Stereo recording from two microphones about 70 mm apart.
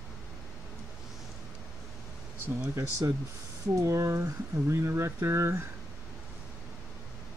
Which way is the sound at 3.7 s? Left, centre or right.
Right.